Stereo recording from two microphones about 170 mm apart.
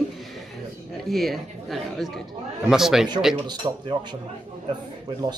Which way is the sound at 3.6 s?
25° right (ahead or behind).